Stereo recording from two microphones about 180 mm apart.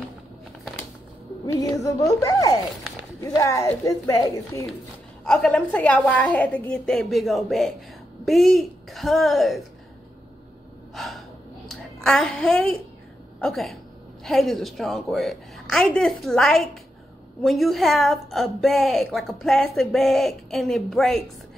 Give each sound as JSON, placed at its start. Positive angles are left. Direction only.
{"t": 1.4, "sound": "music", "side_deg": 20}
{"t": 2.2, "sound": "a woman's voice", "side_deg": 20}
{"t": 5.2, "sound": "a woman's voice", "side_deg": 5}
{"t": 11.0, "sound": "gasp", "side_deg": 0}
{"t": 11.7, "sound": "a woman's voice", "side_deg": 0}